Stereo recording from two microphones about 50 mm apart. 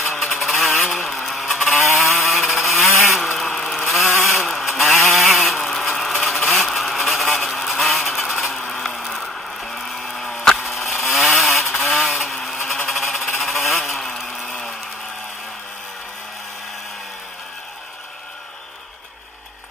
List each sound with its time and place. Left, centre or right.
0.0 s honk: centre
2.0 s vehicle: centre
3.0 s chainsaw: centre
13.4 s a sound: centre